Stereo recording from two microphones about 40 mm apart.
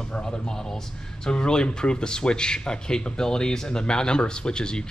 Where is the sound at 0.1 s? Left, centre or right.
Left.